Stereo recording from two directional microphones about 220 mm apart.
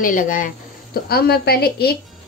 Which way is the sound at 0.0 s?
35° left (ahead or behind).